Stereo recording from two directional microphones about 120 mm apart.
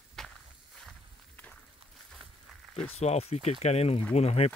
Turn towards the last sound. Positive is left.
turn(degrees=60)  # may be behind; listen again after turning